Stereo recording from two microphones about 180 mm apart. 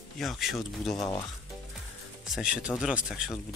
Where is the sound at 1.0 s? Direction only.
20° left (ahead or behind).